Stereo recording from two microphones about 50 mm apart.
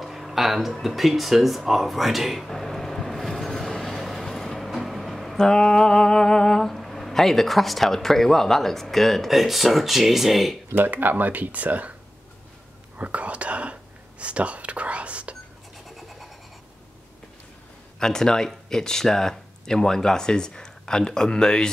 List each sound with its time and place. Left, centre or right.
0.0 s a sound: centre
5.4 s speech: centre
10.8 s speech: right
12.9 s whispering: right
17.9 s speech: centre